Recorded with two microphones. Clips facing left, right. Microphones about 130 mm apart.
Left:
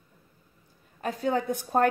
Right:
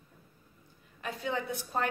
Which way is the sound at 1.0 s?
40° left (ahead or behind).